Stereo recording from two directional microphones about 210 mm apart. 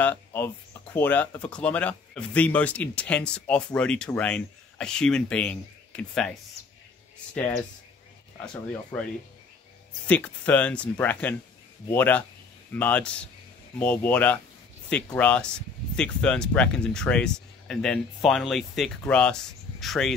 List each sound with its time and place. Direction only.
0.0 s music: 10° left (ahead or behind)
0.9 s speech: 5° left (ahead or behind)
8.9 s speech: 5° left (ahead or behind)